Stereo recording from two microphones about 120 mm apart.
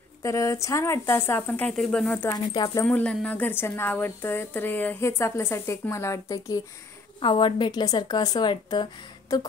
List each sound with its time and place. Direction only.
0.2 s a woman's voice: 25° left (ahead or behind)
2.3 s a woman's voice: 30° left (ahead or behind)
2.8 s a woman's voice: 10° left (ahead or behind); by 6.6 s 30° left (ahead or behind)
7.2 s a woman's voice: 45° left (ahead or behind)